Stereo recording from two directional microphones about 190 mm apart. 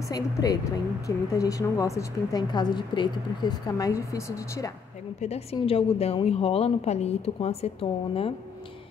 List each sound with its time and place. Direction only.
0.1 s a woman's voice: 20° left (ahead or behind)
5.2 s a woman's voice: 35° left (ahead or behind)